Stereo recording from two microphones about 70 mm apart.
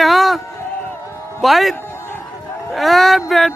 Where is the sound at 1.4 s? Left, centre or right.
Centre.